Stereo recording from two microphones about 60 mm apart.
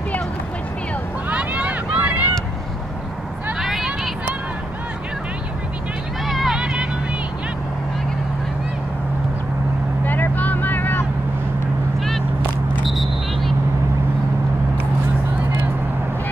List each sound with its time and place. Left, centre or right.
1.3 s boat: right
3.5 s a sound: centre
6.2 s vehicle: centre
6.5 s vehicle: centre
10.0 s vehicle: left
12.8 s a sound: centre